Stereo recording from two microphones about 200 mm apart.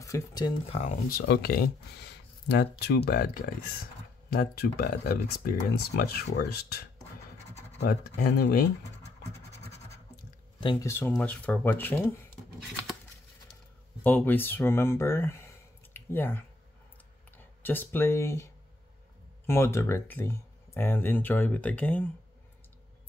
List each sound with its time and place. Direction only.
0.0 s speech: 20° left (ahead or behind)
0.7 s speech: 35° left (ahead or behind)
1.1 s speech: 50° left (ahead or behind)
8.2 s speech: 50° left (ahead or behind)
10.6 s speech: 25° left (ahead or behind)
10.9 s speech: 10° left (ahead or behind)
14.0 s speech: 10° left (ahead or behind)
17.6 s speech: 10° left (ahead or behind)